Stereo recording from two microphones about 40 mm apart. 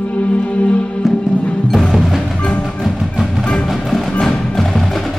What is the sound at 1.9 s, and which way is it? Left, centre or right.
Music, centre.